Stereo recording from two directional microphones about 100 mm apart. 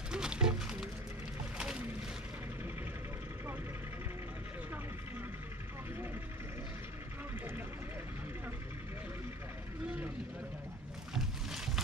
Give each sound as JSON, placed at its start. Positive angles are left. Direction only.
{"t": 0.1, "sound": "music", "side_deg": -10}
{"t": 1.6, "sound": "a sound", "side_deg": -10}
{"t": 11.1, "sound": "boat", "side_deg": -5}